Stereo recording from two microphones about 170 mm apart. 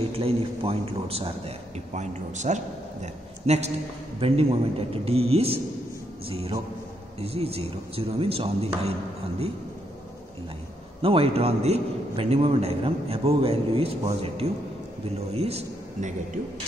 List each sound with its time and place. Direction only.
0.1 s a man's voice: 35° right (ahead or behind)
2.0 s a man's voice: 45° right (ahead or behind)
6.2 s music: 35° right (ahead or behind)
7.2 s a man's voice: 35° right (ahead or behind)
11.0 s a man's voice: 35° right (ahead or behind)